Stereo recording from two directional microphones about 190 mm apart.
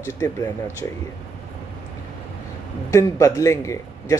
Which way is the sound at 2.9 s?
20° left (ahead or behind).